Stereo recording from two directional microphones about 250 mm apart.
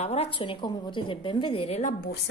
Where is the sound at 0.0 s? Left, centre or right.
Left.